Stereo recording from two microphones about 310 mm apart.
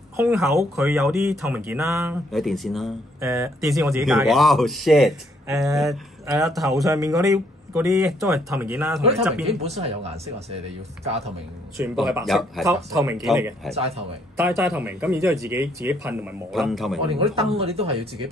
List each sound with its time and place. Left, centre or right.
0.2 s speech: centre
9.6 s speech: centre
11.7 s speech: centre
17.0 s speech: centre